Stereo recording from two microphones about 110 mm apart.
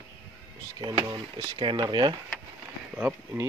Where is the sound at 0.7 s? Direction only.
40° right (ahead or behind).